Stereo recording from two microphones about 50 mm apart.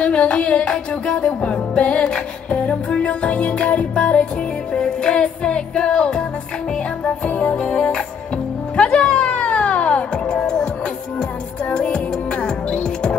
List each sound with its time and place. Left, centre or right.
0.0 s music: left
7.2 s music: left
11.7 s music: left